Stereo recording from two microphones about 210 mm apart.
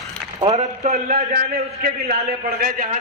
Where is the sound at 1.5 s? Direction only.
45° right (ahead or behind).